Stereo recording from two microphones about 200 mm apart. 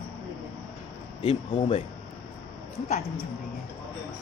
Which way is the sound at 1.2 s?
30° left (ahead or behind).